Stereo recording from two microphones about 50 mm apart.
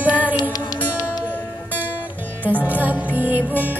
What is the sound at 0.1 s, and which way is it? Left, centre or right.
Music, right.